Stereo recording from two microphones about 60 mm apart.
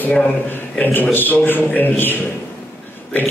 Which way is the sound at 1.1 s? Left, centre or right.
Left.